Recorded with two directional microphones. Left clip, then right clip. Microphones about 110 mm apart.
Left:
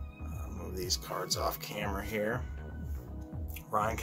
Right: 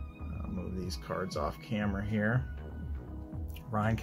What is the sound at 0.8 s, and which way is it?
Speech, 35° left (ahead or behind).